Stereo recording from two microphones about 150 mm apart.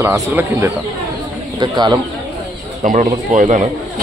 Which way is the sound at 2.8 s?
60° right (ahead or behind).